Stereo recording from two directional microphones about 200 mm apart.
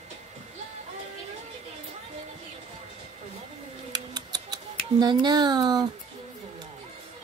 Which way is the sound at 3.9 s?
20° right (ahead or behind).